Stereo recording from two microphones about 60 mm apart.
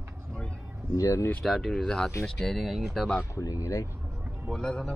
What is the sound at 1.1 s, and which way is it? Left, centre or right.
Speech, left.